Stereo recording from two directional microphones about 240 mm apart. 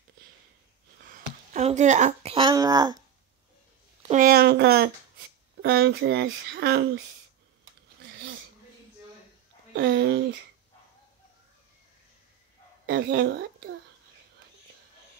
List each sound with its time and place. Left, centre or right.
1.0 s speech: right; by 3.0 s centre
4.0 s speech: right
9.8 s speech: right
12.8 s speech: right